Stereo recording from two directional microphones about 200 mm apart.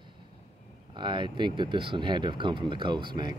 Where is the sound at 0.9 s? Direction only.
25° right (ahead or behind).